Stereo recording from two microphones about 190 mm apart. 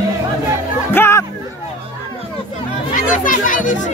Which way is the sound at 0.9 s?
15° left (ahead or behind).